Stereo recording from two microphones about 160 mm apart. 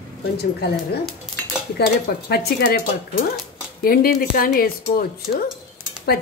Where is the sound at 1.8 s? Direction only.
80° left.